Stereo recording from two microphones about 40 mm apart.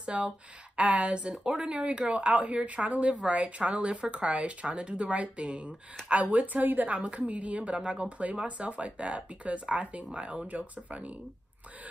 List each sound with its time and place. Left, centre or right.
0.0 s speech: right
10.5 s speech: right